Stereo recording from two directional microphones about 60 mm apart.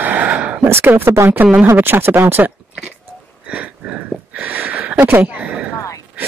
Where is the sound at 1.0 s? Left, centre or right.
Right.